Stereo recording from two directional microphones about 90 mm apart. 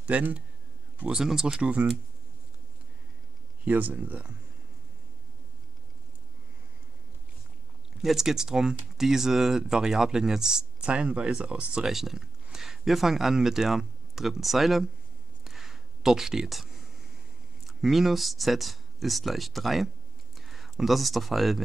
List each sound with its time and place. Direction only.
0.0 s speech: 15° right (ahead or behind)
3.6 s speech: 20° right (ahead or behind)
8.0 s speech: 5° right (ahead or behind)
15.4 s a sound: 5° right (ahead or behind)
17.6 s speech: centre (ahead or behind)